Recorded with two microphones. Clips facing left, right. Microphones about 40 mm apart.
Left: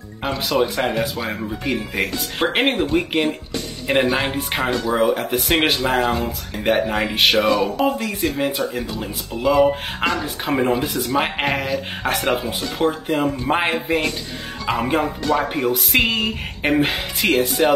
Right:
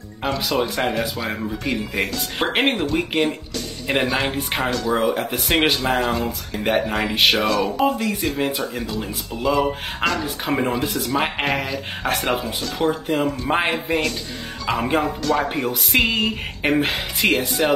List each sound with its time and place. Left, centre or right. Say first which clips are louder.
0.5 s speech: left 3 dB; centre
8.8 s speech: even; left
10.2 s speech: left 2 dB; centre